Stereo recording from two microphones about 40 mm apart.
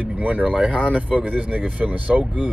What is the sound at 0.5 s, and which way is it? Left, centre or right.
Speech, right.